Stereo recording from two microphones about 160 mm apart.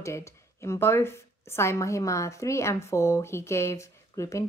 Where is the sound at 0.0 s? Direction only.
20° left (ahead or behind).